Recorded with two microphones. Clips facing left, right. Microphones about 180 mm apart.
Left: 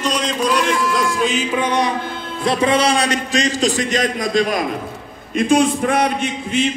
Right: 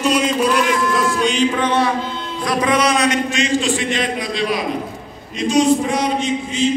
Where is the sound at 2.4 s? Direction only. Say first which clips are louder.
Left 1 dB; 25° left (ahead or behind); by 5.6 s 55° left (ahead or behind).